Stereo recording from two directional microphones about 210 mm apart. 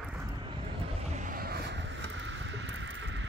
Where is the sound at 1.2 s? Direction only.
40° right (ahead or behind).